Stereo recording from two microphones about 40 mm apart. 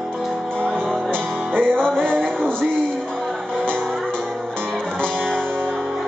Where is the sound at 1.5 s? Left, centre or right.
Right.